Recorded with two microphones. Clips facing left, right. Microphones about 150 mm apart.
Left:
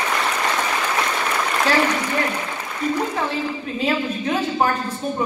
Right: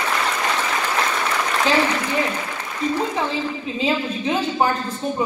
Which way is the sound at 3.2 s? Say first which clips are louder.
Even; centre (ahead or behind).